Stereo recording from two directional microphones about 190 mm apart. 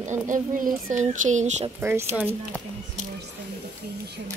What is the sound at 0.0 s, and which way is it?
Speech, 40° right (ahead or behind).